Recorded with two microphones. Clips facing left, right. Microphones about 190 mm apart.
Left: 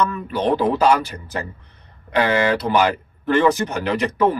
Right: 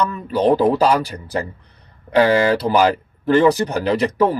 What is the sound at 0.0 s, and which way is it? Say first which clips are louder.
Speech: right 3 dB; 35° right (ahead or behind).